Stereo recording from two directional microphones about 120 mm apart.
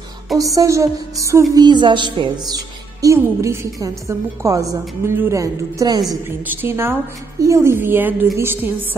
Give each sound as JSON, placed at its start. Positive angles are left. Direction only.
{"t": 0.6, "sound": "a woman's voice", "side_deg": -25}
{"t": 6.4, "sound": "a woman's voice", "side_deg": -15}